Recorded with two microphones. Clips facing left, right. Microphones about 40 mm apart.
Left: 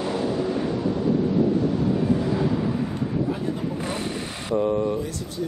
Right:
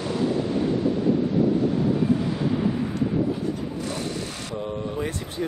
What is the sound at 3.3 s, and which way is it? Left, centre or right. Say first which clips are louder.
Vehicle: left 1 dB; left.